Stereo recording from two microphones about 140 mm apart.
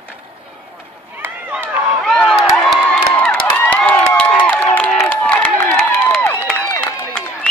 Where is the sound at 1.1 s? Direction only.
15° right (ahead or behind).